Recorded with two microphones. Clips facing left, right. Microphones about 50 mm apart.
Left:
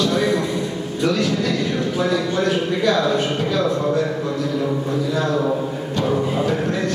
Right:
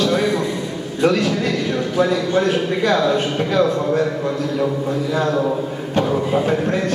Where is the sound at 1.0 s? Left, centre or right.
Right.